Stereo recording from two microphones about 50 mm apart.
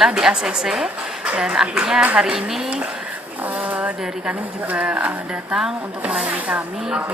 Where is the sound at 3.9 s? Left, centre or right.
Centre.